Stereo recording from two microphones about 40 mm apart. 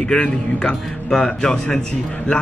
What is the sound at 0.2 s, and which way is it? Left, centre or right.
Speech, left.